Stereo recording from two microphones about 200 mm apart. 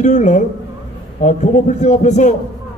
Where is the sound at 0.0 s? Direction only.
35° left (ahead or behind).